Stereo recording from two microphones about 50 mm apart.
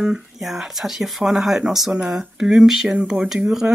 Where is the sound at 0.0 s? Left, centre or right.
Centre.